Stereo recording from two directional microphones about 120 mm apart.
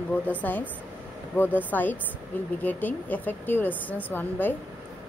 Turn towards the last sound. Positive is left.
turn(degrees=15)  # may be behind; listen again after turning